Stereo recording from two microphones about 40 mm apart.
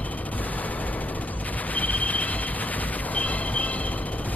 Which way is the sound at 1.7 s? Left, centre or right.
Left.